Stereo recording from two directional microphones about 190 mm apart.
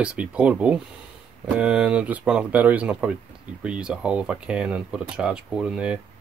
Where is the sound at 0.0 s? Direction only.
5° right (ahead or behind).